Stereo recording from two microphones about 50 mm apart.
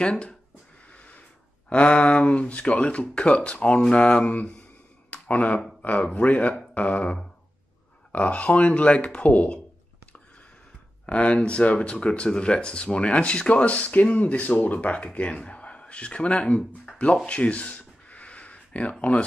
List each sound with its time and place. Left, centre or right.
0.0 s speech: centre
0.9 s snort: left
1.7 s speech: left
5.1 s a sound: left
6.1 s speech: left
6.7 s a sound: left
8.1 s speech: left
11.1 s a man's voice: left
17.3 s a sound: left